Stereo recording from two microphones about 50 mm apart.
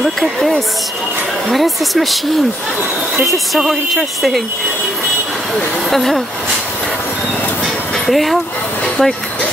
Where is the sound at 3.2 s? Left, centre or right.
Centre.